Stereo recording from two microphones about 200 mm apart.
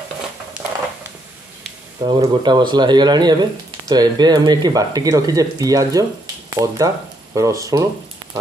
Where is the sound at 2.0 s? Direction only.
20° right (ahead or behind).